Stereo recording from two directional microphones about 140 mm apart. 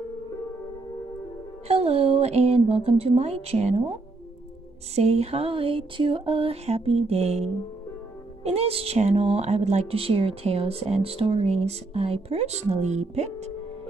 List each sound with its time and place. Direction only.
1.7 s speech: 45° right (ahead or behind)
4.9 s speech: 50° right (ahead or behind)